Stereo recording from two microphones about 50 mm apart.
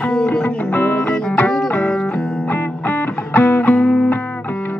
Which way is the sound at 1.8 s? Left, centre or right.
Centre.